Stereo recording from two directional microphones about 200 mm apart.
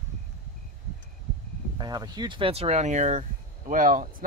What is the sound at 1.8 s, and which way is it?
Speech, 20° right (ahead or behind).